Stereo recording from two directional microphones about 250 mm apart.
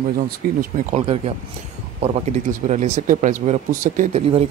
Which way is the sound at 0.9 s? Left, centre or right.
Right.